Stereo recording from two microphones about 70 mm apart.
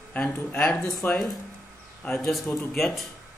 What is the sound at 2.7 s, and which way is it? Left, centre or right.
Speech, centre.